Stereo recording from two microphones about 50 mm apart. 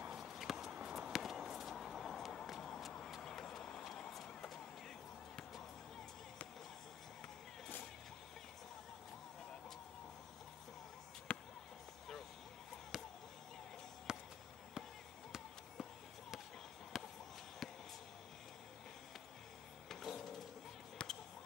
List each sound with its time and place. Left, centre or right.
0.3 s walk: centre
0.8 s walk: centre
1.1 s walk: centre
2.0 s a sound: centre
3.3 s vehicle: centre
11.3 s basketball bounce: left
12.9 s basketball bounce: centre
14.1 s a sound: centre
15.3 s a sound: centre
16.9 s basketball bounce: centre
19.9 s printer: centre
21.0 s a sound: left